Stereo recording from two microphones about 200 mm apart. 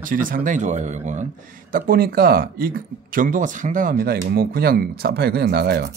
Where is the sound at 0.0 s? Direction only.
45° right (ahead or behind).